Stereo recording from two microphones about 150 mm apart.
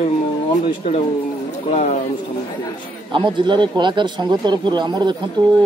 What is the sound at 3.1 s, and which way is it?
Speech, 30° right (ahead or behind).